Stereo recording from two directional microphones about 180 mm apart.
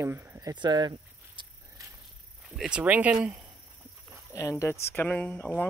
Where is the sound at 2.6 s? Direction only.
5° right (ahead or behind).